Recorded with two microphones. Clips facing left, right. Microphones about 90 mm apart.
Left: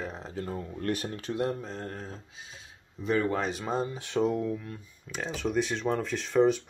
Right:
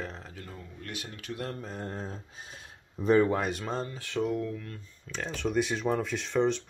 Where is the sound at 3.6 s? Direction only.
15° left (ahead or behind).